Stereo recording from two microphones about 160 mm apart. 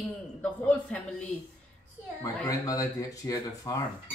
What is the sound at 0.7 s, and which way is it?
Speech, 5° left (ahead or behind).